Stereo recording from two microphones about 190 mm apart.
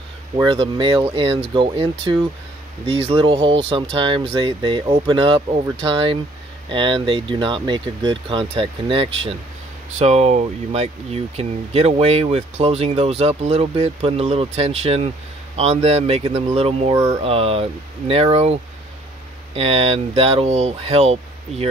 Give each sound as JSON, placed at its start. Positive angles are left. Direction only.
{"t": 0.5, "sound": "speech", "side_deg": -25}